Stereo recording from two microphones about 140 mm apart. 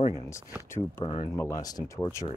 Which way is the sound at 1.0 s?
45° left (ahead or behind).